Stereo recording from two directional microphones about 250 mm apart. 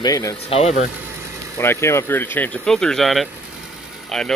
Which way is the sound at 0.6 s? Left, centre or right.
Left.